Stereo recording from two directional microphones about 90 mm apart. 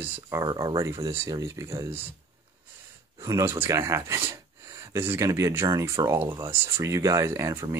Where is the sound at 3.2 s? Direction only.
40° right (ahead or behind).